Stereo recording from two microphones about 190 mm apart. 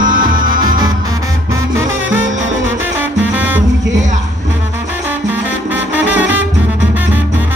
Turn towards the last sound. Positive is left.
turn(degrees=-10)  # may be behind; listen again after turning